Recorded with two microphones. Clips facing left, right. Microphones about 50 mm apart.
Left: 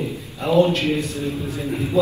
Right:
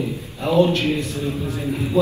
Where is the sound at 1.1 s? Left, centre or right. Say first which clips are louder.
Right 1 dB; right.